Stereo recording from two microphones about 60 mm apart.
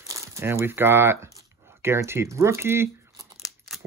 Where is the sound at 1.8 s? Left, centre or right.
Right.